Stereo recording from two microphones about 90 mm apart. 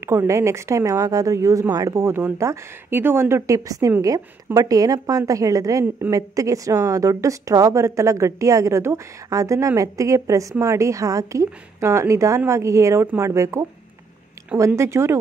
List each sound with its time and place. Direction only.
0.0 s a woman's voice: 30° right (ahead or behind)
2.9 s a woman's voice: 25° right (ahead or behind)
14.8 s a woman's voice: 30° right (ahead or behind)